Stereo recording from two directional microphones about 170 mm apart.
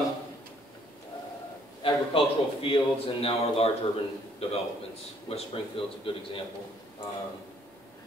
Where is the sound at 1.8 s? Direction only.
30° left (ahead or behind).